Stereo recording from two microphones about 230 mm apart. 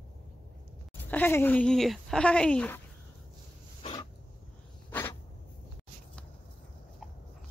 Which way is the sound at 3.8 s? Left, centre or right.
Left.